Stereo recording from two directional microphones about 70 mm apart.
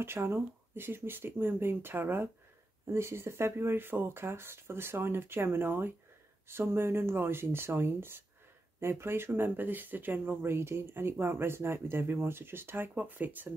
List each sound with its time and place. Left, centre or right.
0.0 s speech: right